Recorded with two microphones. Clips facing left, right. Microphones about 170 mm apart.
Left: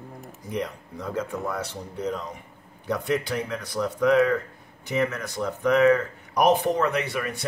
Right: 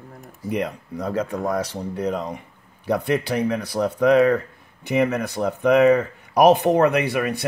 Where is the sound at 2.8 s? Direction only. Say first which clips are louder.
Right 4 dB; 70° right (ahead or behind).